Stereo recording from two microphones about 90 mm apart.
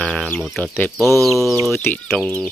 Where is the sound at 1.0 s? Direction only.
35° right (ahead or behind).